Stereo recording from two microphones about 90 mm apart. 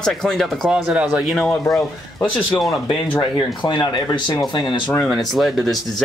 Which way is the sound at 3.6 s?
60° left (ahead or behind).